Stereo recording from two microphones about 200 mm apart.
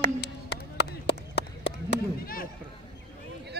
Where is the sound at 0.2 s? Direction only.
55° left (ahead or behind).